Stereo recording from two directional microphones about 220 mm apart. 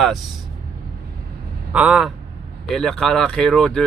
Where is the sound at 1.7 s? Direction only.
5° right (ahead or behind).